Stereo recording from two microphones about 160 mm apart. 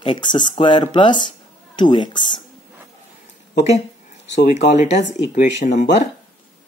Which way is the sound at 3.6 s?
45° left (ahead or behind).